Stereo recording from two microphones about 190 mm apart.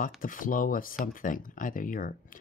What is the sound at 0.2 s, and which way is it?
Speech, 45° left (ahead or behind).